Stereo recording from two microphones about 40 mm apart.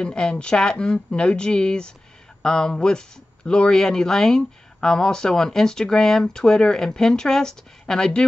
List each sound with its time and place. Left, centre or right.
0.0 s speech: centre